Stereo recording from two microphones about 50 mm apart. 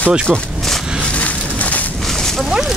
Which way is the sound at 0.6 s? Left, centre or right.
Centre.